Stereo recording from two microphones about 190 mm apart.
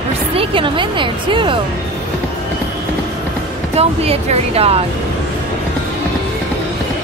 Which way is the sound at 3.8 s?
35° right (ahead or behind).